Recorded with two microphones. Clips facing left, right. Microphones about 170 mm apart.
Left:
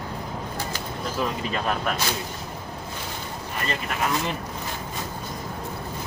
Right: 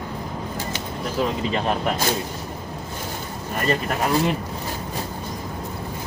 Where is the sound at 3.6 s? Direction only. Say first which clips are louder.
Right 5 dB; 35° right (ahead or behind).